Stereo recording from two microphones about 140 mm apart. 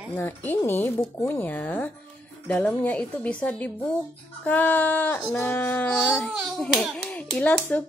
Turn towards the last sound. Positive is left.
turn(degrees=10)  # may be behind; listen again after turning